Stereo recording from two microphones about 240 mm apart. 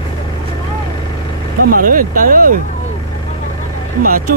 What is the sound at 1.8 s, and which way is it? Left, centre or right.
Speech, right.